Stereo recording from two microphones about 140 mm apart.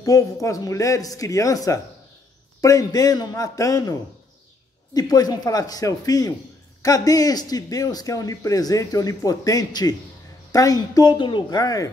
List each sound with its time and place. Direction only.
0.0 s a man's voice: 25° left (ahead or behind)
4.9 s a man's voice: 25° left (ahead or behind)